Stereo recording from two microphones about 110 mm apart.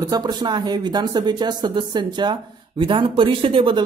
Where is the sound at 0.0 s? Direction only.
40° right (ahead or behind).